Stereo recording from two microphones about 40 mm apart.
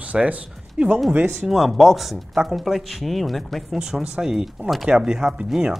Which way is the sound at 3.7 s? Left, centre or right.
Centre.